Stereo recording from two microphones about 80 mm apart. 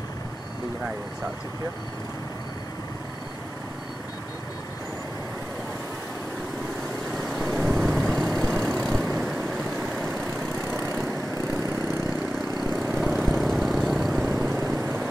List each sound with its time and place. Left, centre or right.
7.2 s vehicle: centre
9.1 s vehicle: centre
10.7 s vehicle: right
11.7 s vehicle: centre
12.9 s vehicle: centre